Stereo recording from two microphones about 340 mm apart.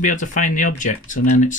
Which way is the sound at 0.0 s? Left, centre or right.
Left.